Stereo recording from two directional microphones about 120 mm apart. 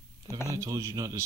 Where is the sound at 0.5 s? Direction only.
30° right (ahead or behind).